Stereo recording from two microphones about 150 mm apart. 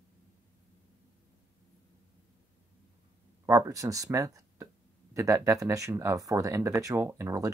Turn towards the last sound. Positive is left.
turn(degrees=-20)  # may be behind; listen again after turning